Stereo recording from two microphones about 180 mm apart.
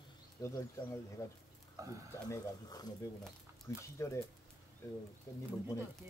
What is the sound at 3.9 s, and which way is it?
Speech, 15° left (ahead or behind).